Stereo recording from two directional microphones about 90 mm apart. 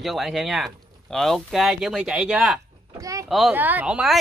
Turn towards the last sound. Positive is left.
turn(degrees=-10)  # may be behind; listen again after turning